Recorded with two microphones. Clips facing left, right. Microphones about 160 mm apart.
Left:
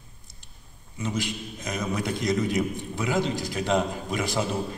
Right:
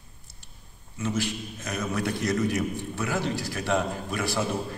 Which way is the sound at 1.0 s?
15° left (ahead or behind).